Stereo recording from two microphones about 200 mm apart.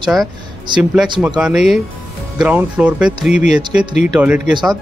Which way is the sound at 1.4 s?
5° right (ahead or behind).